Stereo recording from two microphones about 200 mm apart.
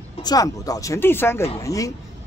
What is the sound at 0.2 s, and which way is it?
Speech, 20° left (ahead or behind).